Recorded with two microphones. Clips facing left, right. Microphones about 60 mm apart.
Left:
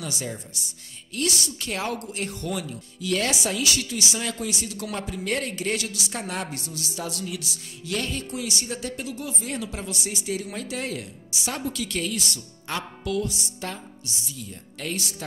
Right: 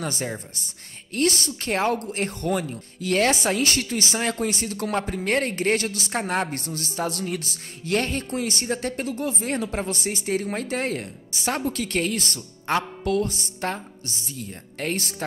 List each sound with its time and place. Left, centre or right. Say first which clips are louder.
0.0 s a woman's voice: right 4 dB; right